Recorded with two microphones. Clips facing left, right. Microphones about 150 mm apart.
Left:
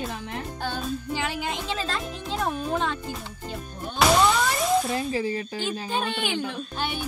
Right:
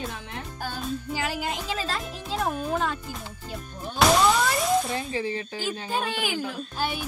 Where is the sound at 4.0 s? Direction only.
Centre (ahead or behind).